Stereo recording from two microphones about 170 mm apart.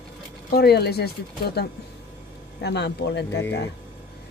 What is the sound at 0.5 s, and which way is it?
Speech, 70° left (ahead or behind).